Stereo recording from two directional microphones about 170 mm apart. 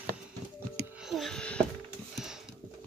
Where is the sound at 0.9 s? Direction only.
Centre (ahead or behind).